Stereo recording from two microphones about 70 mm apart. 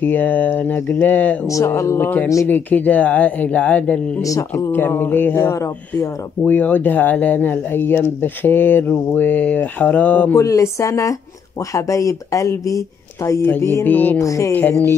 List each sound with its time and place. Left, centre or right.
0.0 s speech: left
4.2 s speech: left
4.7 s a sound: left
6.4 s speech: left
10.3 s speech: left
13.6 s a sound: left
13.8 s speech: left
14.1 s speech: left
14.5 s speech: left